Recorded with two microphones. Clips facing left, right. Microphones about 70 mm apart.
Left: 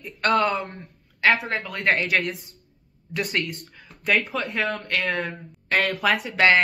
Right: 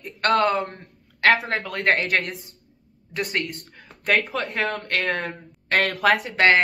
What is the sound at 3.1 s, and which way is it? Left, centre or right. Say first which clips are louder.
Speech: even; right.